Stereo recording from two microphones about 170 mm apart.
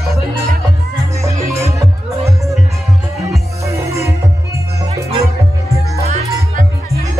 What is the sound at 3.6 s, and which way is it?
Music, 20° right (ahead or behind).